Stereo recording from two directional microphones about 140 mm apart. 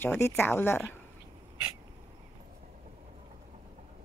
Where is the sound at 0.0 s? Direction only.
15° left (ahead or behind).